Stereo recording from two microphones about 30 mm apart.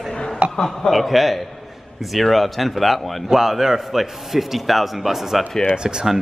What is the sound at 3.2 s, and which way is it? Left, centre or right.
A man's voice, centre.